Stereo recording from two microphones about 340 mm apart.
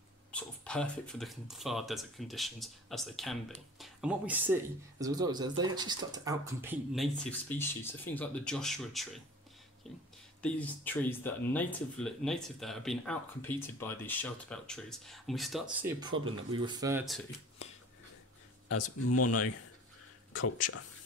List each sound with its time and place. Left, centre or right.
0.3 s speech: centre
18.7 s speech: left